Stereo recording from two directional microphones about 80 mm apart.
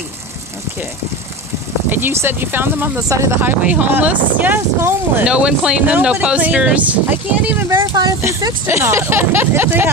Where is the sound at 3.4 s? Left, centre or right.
Centre.